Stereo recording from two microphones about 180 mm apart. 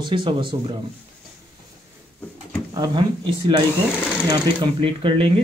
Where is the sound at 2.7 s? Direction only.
25° right (ahead or behind).